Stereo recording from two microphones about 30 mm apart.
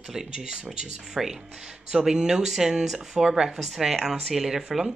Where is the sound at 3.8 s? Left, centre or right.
Centre.